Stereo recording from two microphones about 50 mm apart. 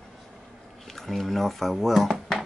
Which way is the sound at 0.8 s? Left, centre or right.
Centre.